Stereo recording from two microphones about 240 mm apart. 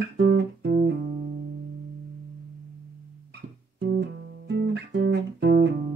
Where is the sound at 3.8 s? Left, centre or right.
Right.